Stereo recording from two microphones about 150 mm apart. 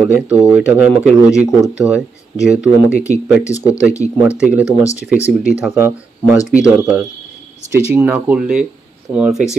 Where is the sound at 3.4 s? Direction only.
20° left (ahead or behind).